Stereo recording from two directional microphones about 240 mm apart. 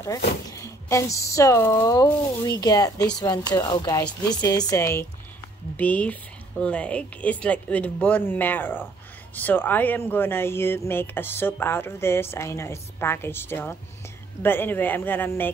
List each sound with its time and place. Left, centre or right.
0.5 s speech: centre